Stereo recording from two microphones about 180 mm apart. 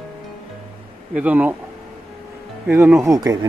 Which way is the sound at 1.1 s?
10° right (ahead or behind).